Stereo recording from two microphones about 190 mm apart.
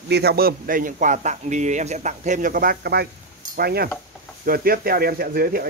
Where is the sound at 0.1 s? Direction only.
55° right (ahead or behind).